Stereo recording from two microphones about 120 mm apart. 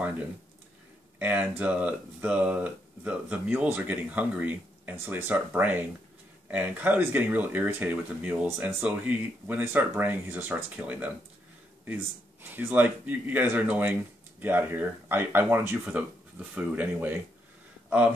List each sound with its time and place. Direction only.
1.2 s speech: 15° right (ahead or behind)
12.4 s speech: 15° right (ahead or behind)